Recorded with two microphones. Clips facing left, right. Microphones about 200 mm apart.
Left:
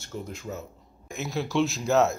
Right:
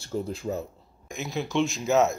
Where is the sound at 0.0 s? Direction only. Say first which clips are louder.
Right 6 dB; 30° right (ahead or behind).